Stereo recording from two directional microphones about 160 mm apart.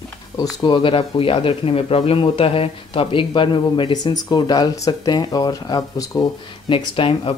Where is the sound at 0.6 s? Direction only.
30° left (ahead or behind).